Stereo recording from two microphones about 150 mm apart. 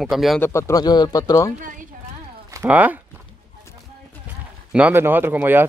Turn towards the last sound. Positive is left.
turn(degrees=-15)  # may be behind; listen again after turning